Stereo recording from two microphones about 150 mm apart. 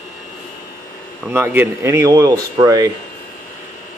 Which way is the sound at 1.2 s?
15° right (ahead or behind).